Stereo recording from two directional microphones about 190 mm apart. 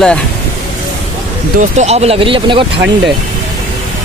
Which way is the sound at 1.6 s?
35° right (ahead or behind).